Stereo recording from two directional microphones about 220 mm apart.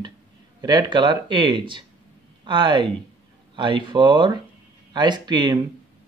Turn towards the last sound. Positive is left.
turn(degrees=-20)  # may be behind; listen again after turning